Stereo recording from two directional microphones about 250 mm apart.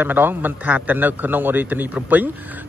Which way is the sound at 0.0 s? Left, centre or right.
Centre.